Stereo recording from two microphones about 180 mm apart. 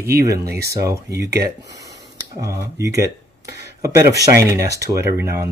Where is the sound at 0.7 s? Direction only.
20° right (ahead or behind).